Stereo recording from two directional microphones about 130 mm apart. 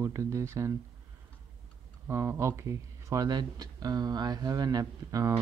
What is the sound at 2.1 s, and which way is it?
Speech, 20° right (ahead or behind).